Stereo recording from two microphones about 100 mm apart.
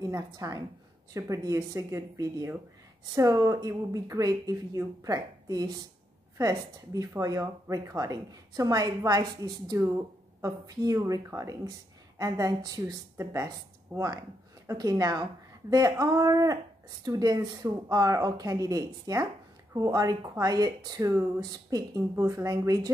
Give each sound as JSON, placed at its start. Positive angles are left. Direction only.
{"t": 0.0, "sound": "a woman's voice", "side_deg": -35}
{"t": 22.1, "sound": "a woman's voice", "side_deg": -30}